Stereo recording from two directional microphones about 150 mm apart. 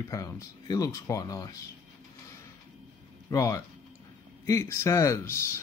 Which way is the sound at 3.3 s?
20° left (ahead or behind).